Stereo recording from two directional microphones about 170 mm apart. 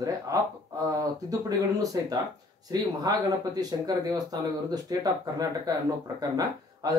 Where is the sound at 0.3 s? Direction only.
20° right (ahead or behind).